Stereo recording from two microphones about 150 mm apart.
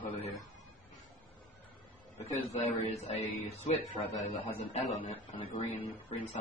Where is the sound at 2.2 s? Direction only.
45° left (ahead or behind).